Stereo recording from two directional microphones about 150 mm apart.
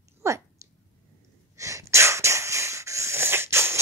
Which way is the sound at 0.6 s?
20° right (ahead or behind).